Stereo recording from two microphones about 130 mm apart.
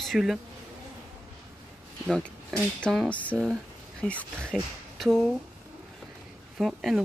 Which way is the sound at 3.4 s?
5° right (ahead or behind).